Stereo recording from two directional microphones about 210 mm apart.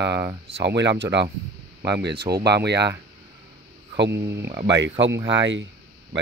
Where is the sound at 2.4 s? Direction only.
55° right (ahead or behind).